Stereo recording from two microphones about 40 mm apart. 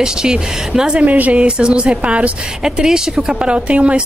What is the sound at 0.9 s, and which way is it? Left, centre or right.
Speech, right.